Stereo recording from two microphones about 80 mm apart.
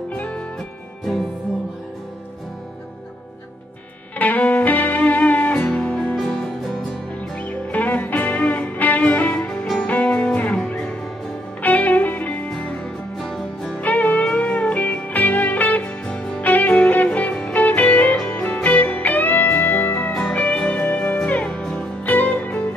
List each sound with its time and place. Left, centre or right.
0.1 s music: centre
4.2 s music: centre
6.1 s music: centre
7.3 s music: centre
13.2 s music: centre
13.7 s music: centre